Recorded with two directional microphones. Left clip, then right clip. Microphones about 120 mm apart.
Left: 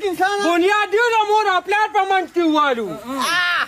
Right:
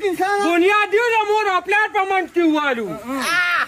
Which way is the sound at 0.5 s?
65° left (ahead or behind).